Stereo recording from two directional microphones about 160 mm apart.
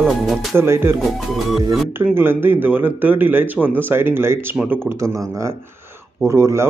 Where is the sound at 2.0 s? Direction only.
15° right (ahead or behind).